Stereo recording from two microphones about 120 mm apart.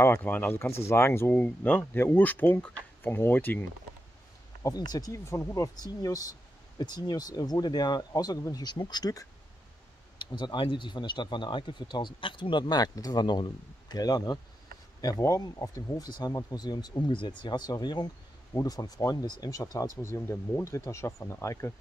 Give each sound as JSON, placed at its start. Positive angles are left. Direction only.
{"t": 0.0, "sound": "speech", "side_deg": 15}
{"t": 4.6, "sound": "speech", "side_deg": 35}
{"t": 10.3, "sound": "speech", "side_deg": 40}